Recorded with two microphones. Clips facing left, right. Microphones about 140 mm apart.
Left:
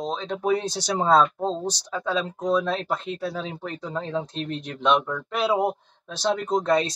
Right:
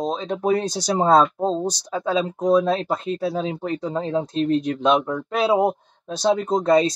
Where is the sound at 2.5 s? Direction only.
40° right (ahead or behind).